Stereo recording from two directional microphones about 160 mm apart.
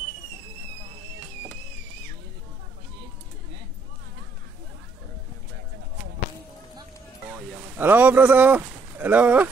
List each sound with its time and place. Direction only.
7.2 s speech: 15° right (ahead or behind)